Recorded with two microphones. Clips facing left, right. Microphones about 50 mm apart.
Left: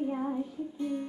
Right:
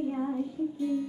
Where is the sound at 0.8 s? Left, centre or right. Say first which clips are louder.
Right 2 dB; left.